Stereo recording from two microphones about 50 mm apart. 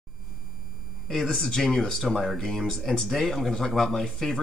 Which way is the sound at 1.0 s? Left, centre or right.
Centre.